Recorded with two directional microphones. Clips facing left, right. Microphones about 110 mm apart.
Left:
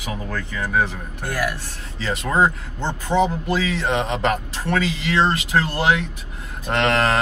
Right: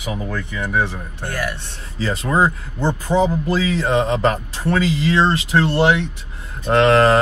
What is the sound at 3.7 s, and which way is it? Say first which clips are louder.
Speech: right 4 dB; 35° right (ahead or behind).